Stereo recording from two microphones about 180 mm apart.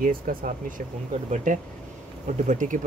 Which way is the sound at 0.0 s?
50° right (ahead or behind).